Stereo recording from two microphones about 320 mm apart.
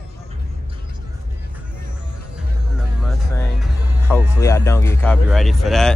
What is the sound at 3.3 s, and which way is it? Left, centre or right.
Music, centre.